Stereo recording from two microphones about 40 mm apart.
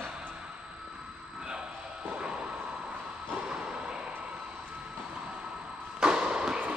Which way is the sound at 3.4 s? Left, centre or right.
Right.